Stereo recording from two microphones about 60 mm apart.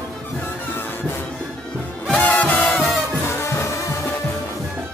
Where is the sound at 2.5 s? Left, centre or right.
Centre.